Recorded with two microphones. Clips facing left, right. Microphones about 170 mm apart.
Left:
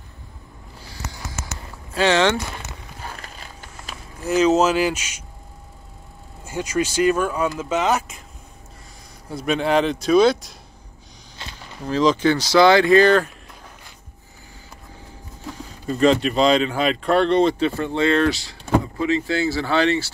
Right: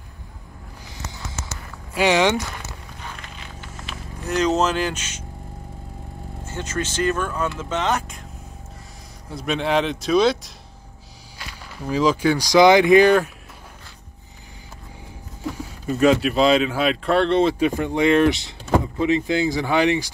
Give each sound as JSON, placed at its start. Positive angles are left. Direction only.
{"t": 0.8, "sound": "a sound", "side_deg": -20}
{"t": 2.0, "sound": "speech", "side_deg": -15}
{"t": 3.0, "sound": "a sound", "side_deg": 40}
{"t": 3.9, "sound": "speech", "side_deg": 5}
{"t": 6.4, "sound": "speech", "side_deg": 10}
{"t": 9.3, "sound": "speech", "side_deg": 0}
{"t": 11.8, "sound": "speech", "side_deg": -10}
{"t": 15.5, "sound": "speech", "side_deg": -5}